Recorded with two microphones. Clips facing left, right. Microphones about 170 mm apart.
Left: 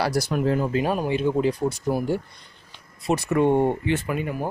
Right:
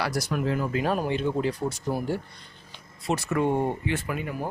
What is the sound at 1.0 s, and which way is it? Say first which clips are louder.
Speech: left 4 dB; 10° left (ahead or behind).